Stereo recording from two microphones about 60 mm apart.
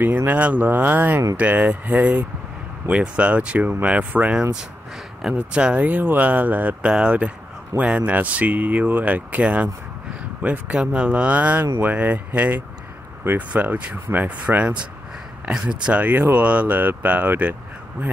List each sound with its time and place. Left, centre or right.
0.0 s speech: right
5.5 s speech: centre
10.7 s speech: centre